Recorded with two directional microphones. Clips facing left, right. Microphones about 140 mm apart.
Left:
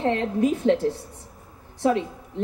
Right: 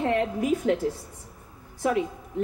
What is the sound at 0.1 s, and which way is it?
Speech, 25° left (ahead or behind).